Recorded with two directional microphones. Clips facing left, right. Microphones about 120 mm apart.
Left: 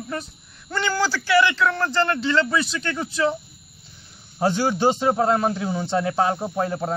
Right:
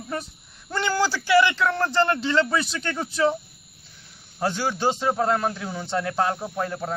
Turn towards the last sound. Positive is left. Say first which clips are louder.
# left 4 dB
turn(degrees=15)  # may be behind; listen again after turning